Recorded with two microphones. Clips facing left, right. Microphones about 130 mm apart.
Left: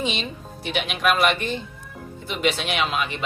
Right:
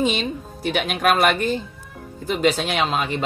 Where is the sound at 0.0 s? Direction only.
45° right (ahead or behind).